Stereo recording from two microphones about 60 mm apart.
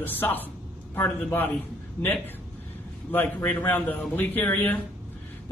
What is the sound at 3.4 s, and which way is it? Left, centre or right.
A man's voice, left.